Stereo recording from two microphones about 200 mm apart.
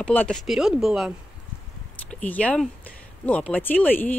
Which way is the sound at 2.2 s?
5° left (ahead or behind).